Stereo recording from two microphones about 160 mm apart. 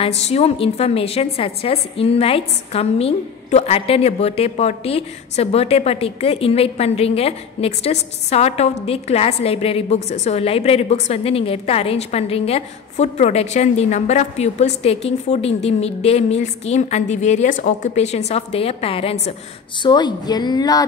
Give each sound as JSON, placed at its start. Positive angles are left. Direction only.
{"t": 0.0, "sound": "a woman's voice", "side_deg": 40}
{"t": 19.8, "sound": "speech", "side_deg": 25}